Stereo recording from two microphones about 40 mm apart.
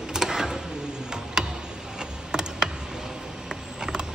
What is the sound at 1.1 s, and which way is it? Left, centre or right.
Tick-tock, centre.